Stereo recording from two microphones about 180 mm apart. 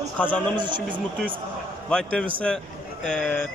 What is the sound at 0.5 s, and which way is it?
Speech, 25° right (ahead or behind).